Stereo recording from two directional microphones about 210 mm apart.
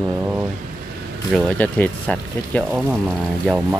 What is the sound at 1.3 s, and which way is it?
Speech, 5° left (ahead or behind).